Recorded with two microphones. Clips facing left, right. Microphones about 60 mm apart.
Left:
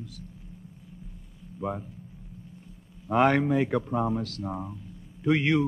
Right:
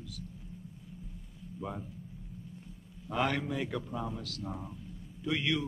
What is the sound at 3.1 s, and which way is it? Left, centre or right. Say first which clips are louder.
A man's voice: left 10 dB; left.